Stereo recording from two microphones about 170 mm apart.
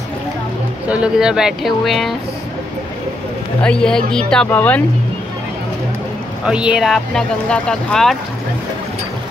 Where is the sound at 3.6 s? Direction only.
5° left (ahead or behind).